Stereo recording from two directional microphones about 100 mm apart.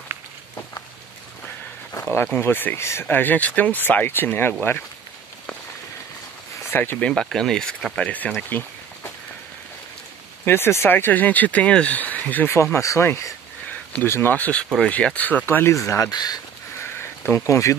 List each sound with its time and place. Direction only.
1.9 s a sound: 25° left (ahead or behind)
2.2 s speech: 20° left (ahead or behind)
6.6 s speech: 25° left (ahead or behind)
7.1 s speech: 5° left (ahead or behind)
8.4 s a sound: 20° left (ahead or behind)
10.4 s speech: 25° left (ahead or behind)
15.7 s speech: 30° left (ahead or behind)
16.1 s speech: 40° left (ahead or behind)
16.8 s a sound: 25° left (ahead or behind)
17.5 s speech: 30° left (ahead or behind)